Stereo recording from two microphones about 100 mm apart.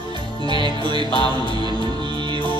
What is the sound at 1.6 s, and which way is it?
Music, 45° right (ahead or behind).